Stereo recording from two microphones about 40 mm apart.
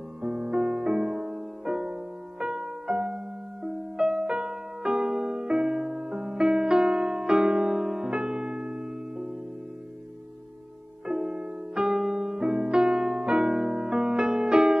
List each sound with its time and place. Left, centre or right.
0.2 s music: right
2.4 s music: right
6.0 s music: right
11.1 s music: centre